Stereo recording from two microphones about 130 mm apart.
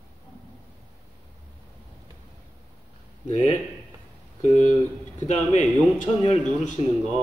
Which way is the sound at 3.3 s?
65° left (ahead or behind).